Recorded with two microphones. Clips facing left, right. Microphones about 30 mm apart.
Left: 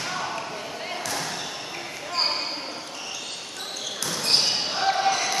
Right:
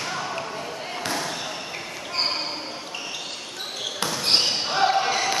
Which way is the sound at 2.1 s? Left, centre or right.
Centre.